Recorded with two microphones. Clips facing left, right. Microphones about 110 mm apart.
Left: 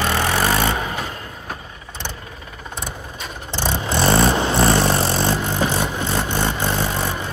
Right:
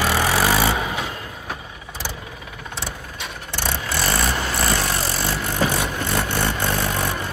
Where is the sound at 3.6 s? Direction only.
20° left (ahead or behind).